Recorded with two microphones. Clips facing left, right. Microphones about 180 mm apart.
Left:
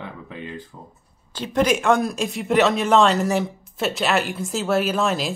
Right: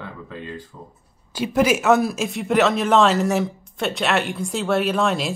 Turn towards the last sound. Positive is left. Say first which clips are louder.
# right 1 dB
turn(degrees=0)  # may be behind; listen again after turning